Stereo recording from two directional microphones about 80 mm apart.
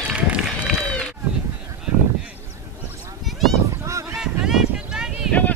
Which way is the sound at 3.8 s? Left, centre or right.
Right.